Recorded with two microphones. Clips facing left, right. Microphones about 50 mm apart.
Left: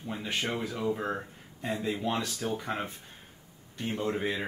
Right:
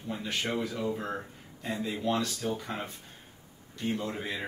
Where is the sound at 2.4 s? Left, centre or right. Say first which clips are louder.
Even; centre.